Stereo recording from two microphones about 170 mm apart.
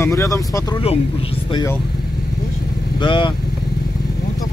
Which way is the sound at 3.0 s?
30° left (ahead or behind).